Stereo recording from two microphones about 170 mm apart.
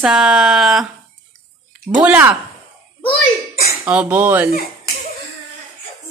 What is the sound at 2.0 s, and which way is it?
Speech, 10° right (ahead or behind).